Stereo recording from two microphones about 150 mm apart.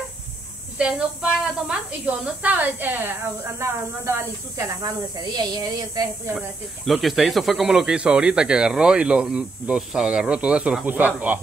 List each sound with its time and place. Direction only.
0.7 s a woman's voice: 5° right (ahead or behind); by 6.3 s 25° right (ahead or behind)
6.3 s speech: centre (ahead or behind)